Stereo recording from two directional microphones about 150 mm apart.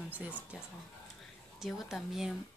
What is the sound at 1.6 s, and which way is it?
Speech, centre (ahead or behind).